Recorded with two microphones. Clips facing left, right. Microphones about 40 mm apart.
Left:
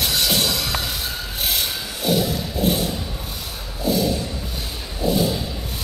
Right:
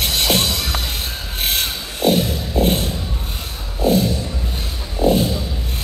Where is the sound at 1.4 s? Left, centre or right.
Right.